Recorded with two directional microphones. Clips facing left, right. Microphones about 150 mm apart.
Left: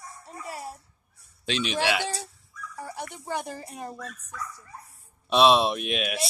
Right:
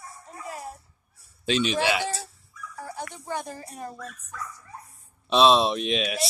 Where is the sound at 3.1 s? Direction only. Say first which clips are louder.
Left 1 dB; 15° left (ahead or behind).